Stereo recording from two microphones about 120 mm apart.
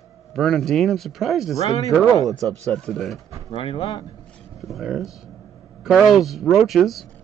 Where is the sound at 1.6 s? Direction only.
30° left (ahead or behind).